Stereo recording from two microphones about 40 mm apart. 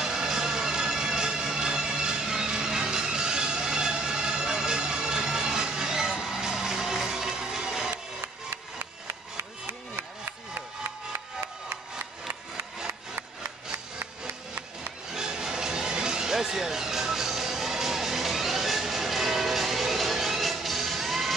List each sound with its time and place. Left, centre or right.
0.0 s bagpipes: centre
9.0 s a sound: right
15.0 s music: centre